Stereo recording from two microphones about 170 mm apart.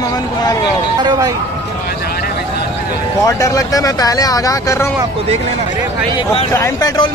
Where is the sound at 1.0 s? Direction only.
25° right (ahead or behind).